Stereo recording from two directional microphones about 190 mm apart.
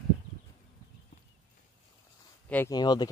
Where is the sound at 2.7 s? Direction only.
20° left (ahead or behind).